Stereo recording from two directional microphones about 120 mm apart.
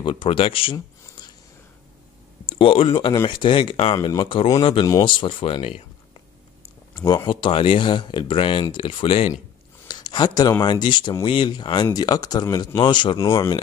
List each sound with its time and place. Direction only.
0.0 s speech: 45° left (ahead or behind)
2.5 s speech: 50° left (ahead or behind)
6.9 s speech: 30° left (ahead or behind); by 9.3 s 50° left (ahead or behind)
9.8 s speech: 35° left (ahead or behind)
13.2 s speech: 30° left (ahead or behind)